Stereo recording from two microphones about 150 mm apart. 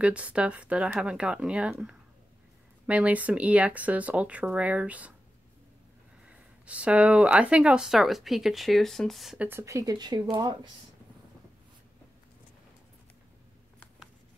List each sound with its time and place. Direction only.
0.0 s speech: 10° right (ahead or behind)
6.2 s speech: 10° right (ahead or behind)
9.5 s speech: 20° right (ahead or behind)